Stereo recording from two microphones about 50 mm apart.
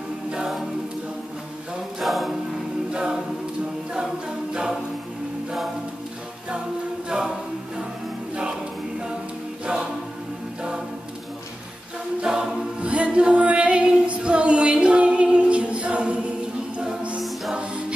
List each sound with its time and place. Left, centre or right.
2.0 s music: centre
2.9 s a capella: centre
7.1 s a capella: centre
12.3 s choir: centre
12.8 s female singing: right
17.6 s music: right